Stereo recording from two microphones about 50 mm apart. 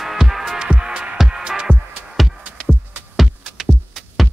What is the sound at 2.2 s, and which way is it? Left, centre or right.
Music, centre.